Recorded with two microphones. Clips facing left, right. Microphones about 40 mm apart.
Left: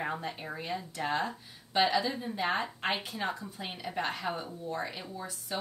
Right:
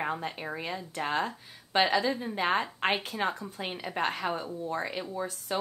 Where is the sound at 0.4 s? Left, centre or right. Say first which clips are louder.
Right 2 dB; right.